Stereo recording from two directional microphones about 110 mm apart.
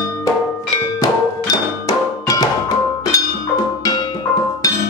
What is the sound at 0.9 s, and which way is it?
Music, 30° left (ahead or behind).